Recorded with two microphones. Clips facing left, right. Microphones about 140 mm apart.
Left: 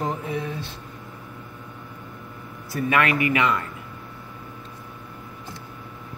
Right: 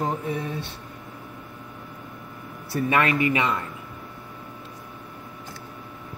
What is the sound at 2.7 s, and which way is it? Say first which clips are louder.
Speech: even; 30° right (ahead or behind).